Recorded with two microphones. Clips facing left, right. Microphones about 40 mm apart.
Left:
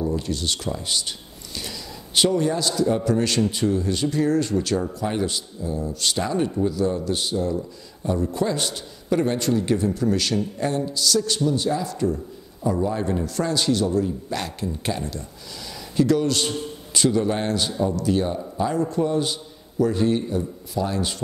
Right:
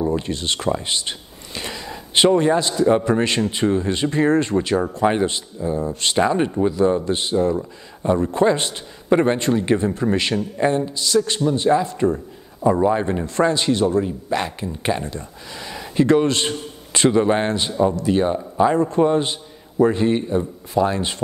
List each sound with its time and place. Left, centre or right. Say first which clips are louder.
0.0 s a man's voice: right 3 dB; right